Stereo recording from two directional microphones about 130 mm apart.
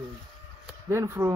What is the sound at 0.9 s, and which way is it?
Speech, 20° right (ahead or behind).